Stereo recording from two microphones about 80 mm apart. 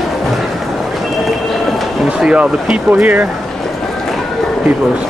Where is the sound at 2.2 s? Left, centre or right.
Centre.